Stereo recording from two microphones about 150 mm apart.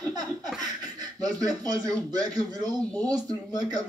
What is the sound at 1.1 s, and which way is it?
A man's voice, 25° right (ahead or behind).